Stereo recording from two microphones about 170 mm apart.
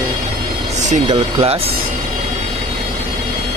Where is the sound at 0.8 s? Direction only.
45° right (ahead or behind).